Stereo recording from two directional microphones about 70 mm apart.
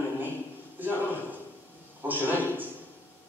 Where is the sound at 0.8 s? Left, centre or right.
Right.